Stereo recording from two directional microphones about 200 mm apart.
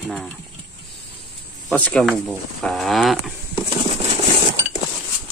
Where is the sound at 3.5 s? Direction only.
30° right (ahead or behind).